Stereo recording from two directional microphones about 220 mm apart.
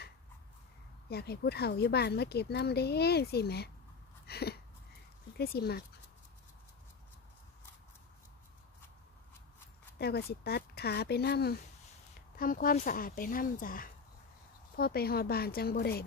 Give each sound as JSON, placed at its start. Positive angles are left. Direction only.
{"t": 1.0, "sound": "speech", "side_deg": 45}
{"t": 4.3, "sound": "a sound", "side_deg": 45}
{"t": 5.4, "sound": "speech", "side_deg": 45}
{"t": 9.9, "sound": "speech", "side_deg": 45}